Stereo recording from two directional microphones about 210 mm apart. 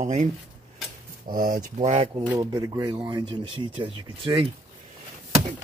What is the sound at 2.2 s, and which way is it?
Speech, 15° right (ahead or behind).